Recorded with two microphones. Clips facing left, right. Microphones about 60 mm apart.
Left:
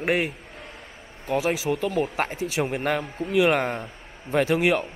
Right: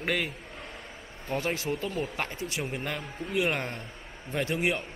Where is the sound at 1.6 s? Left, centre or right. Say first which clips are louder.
Left 7 dB; left.